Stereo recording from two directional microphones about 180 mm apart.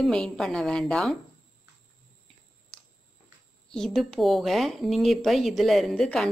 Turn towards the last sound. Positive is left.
turn(degrees=5)  # may be behind; listen again after turning